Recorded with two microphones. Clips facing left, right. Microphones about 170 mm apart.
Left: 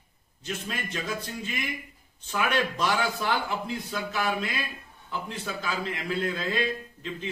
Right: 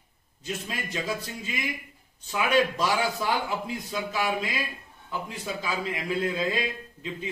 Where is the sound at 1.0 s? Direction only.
5° right (ahead or behind).